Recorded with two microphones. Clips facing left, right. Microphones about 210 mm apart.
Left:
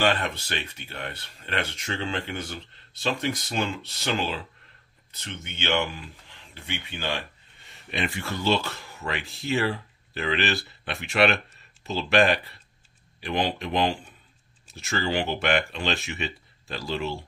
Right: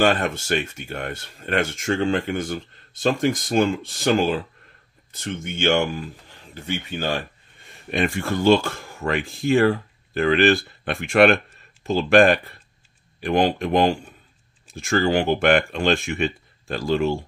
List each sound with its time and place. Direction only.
0.0 s speech: 45° right (ahead or behind)